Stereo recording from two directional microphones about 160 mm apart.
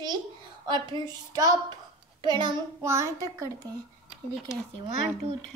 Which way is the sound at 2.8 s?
20° right (ahead or behind).